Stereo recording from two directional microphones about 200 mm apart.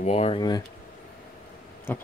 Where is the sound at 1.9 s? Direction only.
10° left (ahead or behind).